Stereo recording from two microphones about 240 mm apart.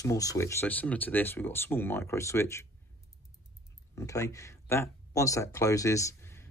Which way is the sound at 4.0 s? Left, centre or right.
Centre.